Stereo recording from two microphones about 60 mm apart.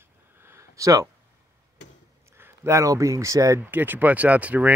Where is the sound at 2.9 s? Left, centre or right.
Right.